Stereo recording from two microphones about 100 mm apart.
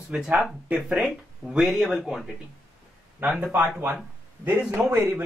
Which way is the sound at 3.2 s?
15° right (ahead or behind).